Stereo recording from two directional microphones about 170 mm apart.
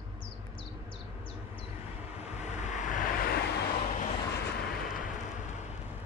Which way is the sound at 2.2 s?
40° left (ahead or behind).